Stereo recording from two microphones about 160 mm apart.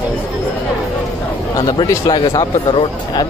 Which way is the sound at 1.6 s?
25° left (ahead or behind).